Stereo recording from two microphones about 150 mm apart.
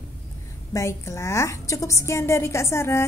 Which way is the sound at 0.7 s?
20° left (ahead or behind).